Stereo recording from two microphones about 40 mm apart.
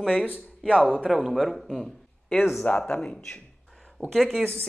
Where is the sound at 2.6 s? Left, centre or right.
Left.